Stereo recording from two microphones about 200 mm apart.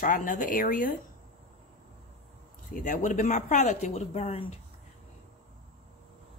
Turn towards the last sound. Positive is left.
turn(degrees=30)  # may be behind; listen again after turning